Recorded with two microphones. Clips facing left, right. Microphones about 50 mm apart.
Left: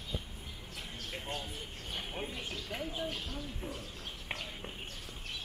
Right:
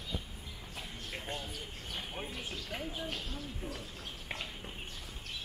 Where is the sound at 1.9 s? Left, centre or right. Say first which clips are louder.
Left 2 dB; centre.